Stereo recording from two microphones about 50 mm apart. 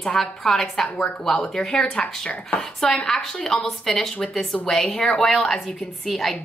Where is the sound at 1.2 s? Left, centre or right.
Centre.